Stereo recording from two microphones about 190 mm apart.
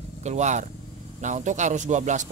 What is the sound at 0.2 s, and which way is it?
Speech, 35° right (ahead or behind).